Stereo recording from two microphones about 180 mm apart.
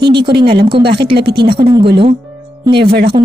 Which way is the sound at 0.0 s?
25° right (ahead or behind).